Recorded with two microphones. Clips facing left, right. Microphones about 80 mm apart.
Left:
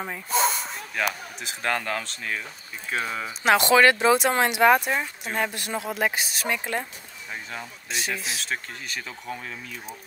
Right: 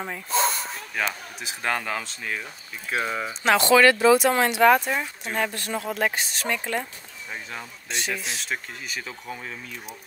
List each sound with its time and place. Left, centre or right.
0.0 s hiss: centre
1.4 s speech: centre
3.4 s speech: centre
5.5 s speech: centre
7.5 s speech: centre